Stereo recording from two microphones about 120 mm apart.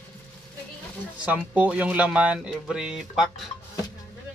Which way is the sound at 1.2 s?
15° right (ahead or behind).